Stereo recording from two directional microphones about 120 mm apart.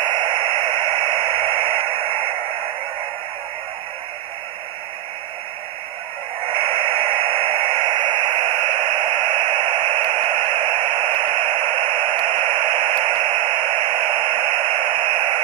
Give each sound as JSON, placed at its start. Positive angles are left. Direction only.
{"t": 0.0, "sound": "radio", "side_deg": -40}
{"t": 6.4, "sound": "radio", "side_deg": -45}